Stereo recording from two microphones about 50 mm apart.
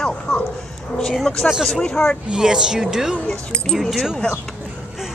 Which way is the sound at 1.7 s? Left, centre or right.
Centre.